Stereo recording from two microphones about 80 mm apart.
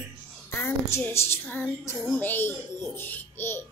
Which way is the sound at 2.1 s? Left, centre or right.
Left.